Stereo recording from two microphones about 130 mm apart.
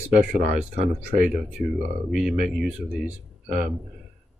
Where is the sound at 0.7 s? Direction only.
70° right (ahead or behind).